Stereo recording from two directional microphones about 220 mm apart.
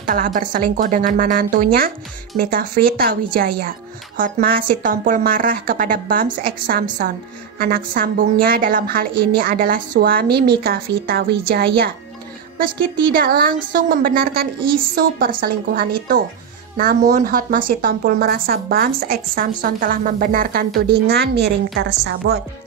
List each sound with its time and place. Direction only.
0.0 s a woman's voice: 40° right (ahead or behind)
13.1 s a woman's voice: 45° right (ahead or behind)